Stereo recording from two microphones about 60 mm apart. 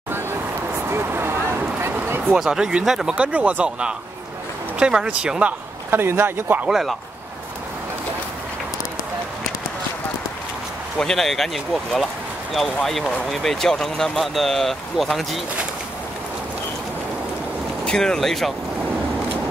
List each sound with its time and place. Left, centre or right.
0.8 s a sound: right
2.3 s speech: centre
3.2 s speech: right
5.9 s a man's voice: right
6.7 s speech: centre
11.0 s speech: centre
17.8 s speech: centre